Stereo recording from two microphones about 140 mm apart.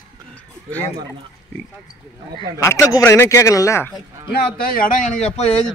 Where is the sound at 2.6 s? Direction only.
20° left (ahead or behind).